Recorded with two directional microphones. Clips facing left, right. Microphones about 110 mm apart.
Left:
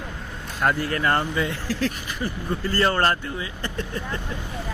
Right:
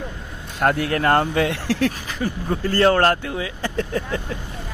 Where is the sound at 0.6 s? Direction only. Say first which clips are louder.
Right 4 dB; 60° right (ahead or behind).